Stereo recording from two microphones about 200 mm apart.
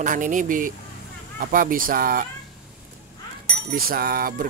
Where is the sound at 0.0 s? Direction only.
40° right (ahead or behind).